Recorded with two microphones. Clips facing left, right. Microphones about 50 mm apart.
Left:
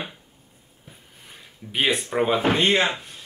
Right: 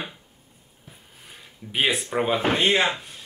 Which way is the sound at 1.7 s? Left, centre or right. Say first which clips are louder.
Left 1 dB; centre.